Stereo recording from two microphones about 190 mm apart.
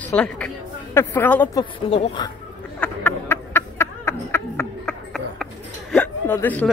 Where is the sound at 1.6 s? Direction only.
30° left (ahead or behind).